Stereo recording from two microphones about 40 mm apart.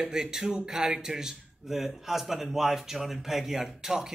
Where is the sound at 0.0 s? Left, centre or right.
Centre.